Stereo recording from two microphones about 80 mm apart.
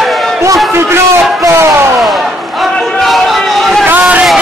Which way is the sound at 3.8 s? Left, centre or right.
Right.